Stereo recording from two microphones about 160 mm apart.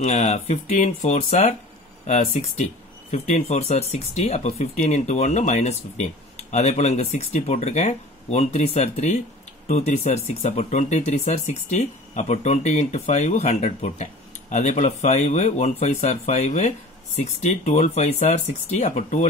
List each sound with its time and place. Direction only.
0.0 s speech: 45° left (ahead or behind)